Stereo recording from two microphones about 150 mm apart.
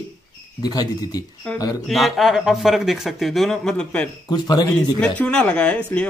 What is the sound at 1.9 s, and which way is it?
Speech, centre (ahead or behind).